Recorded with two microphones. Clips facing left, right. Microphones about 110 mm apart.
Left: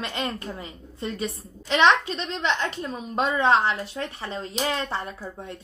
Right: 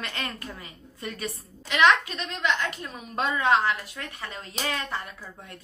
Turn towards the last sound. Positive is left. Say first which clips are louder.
# left 7 dB
turn(degrees=30)  # may be behind; listen again after turning